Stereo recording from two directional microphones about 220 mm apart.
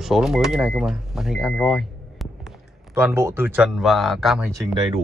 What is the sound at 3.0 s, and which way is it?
Speech, 10° right (ahead or behind).